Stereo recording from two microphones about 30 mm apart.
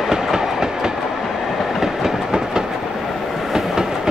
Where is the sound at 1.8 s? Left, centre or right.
Centre.